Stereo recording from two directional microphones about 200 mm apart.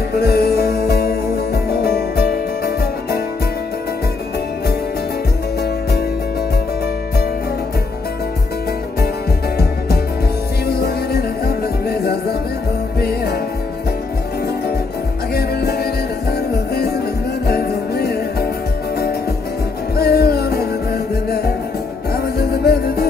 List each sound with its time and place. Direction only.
0.1 s music: 55° left (ahead or behind)
10.7 s music: 50° left (ahead or behind)
15.3 s music: 50° left (ahead or behind)
20.0 s music: 50° left (ahead or behind)